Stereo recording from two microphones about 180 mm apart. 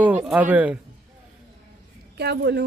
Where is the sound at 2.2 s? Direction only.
65° right (ahead or behind).